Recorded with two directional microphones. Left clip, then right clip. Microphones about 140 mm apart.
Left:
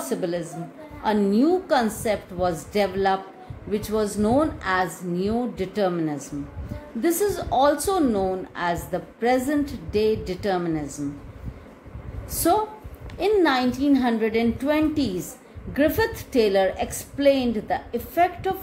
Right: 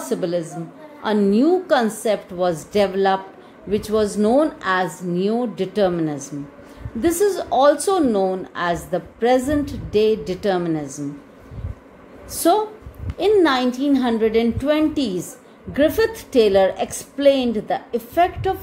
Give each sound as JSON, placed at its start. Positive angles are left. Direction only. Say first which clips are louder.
{"t": 0.0, "sound": "a woman's voice", "louder": "right 4 dB", "side_deg": -30}
{"t": 12.3, "sound": "a woman's voice", "louder": "right 4 dB", "side_deg": -35}